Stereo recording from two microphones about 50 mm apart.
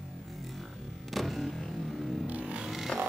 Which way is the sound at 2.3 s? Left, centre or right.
Right.